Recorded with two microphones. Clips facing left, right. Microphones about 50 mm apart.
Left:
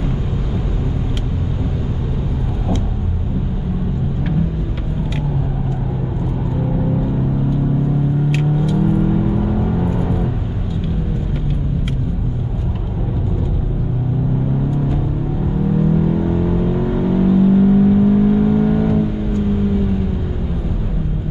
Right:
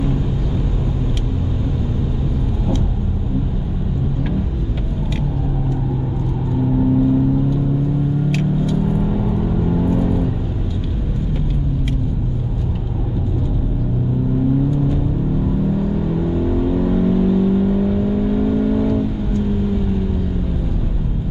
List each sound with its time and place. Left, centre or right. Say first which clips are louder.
8.3 s vehicle: left 1 dB; centre
16.1 s vehicle: left 2 dB; centre